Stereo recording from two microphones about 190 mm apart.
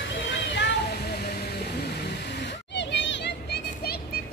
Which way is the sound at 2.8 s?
70° left (ahead or behind).